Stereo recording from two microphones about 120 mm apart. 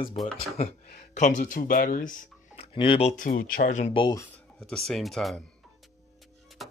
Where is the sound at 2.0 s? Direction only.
90° left.